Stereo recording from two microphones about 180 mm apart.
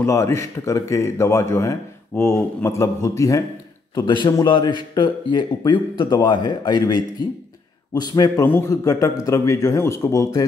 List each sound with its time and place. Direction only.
0.0 s a man's voice: 15° left (ahead or behind)